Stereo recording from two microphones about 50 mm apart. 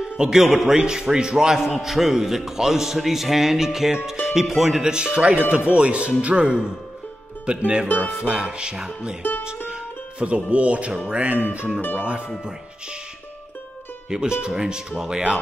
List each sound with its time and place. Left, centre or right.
0.0 s a man's voice: centre
4.9 s a man's voice: centre
14.0 s a man's voice: centre